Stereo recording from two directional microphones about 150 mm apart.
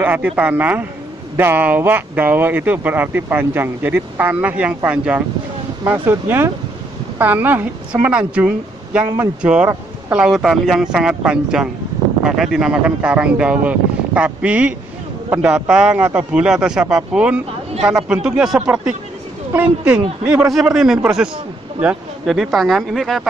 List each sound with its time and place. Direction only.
0.0 s a woman's voice: 10° right (ahead or behind)
9.0 s speech: 25° right (ahead or behind)
9.4 s speech: 5° right (ahead or behind)
9.7 s a sound: 15° right (ahead or behind)
10.2 s speech: centre (ahead or behind)